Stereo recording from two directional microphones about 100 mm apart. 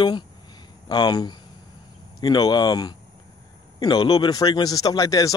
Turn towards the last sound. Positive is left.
turn(degrees=35)  # may be behind; listen again after turning